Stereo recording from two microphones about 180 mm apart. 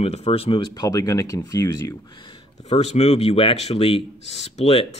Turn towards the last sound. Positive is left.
turn(degrees=30)  # may be behind; listen again after turning